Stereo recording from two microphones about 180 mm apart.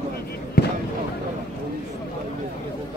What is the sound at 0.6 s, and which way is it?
Fireworks, 65° left (ahead or behind).